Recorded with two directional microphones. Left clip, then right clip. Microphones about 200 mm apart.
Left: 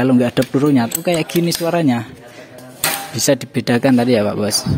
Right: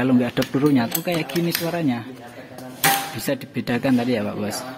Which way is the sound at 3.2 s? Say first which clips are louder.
Left 9 dB; 30° left (ahead or behind).